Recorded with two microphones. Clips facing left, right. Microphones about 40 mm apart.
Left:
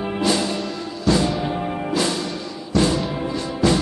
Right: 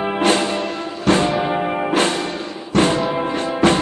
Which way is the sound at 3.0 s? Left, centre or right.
Right.